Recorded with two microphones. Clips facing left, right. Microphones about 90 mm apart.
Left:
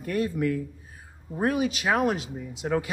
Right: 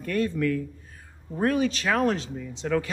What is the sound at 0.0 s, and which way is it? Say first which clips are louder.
A man's voice: right 1 dB; 15° left (ahead or behind).